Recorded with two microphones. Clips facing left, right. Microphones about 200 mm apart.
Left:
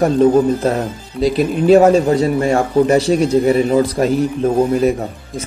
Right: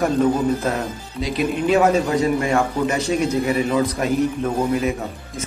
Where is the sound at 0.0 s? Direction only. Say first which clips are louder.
Left 6 dB; 30° left (ahead or behind).